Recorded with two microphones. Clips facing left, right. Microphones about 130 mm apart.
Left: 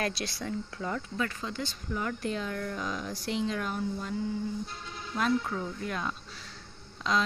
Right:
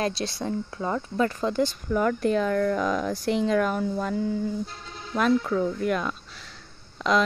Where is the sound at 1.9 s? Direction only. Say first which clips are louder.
Right 8 dB; 55° right (ahead or behind); by 4.2 s 75° right (ahead or behind).